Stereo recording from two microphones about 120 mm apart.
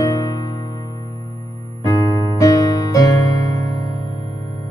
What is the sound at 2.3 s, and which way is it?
Music, 30° left (ahead or behind).